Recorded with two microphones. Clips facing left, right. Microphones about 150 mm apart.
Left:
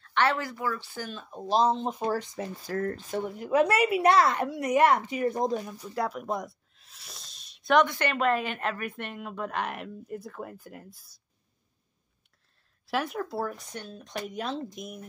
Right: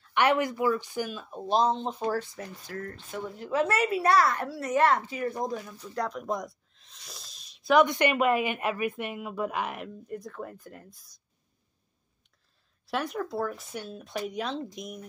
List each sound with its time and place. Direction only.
0.1 s speech: 15° right (ahead or behind); by 2.0 s 5° left (ahead or behind)
2.0 s speech: 20° left (ahead or behind)
2.6 s speech: 35° left (ahead or behind)
3.3 s speech: 15° left (ahead or behind)
5.9 s a sound: 5° left (ahead or behind)
7.8 s a woman's voice: 15° right (ahead or behind); by 11.1 s 5° left (ahead or behind)
12.8 s a woman's voice: centre (ahead or behind)